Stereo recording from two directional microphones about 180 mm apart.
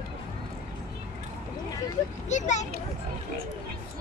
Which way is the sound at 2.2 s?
40° left (ahead or behind).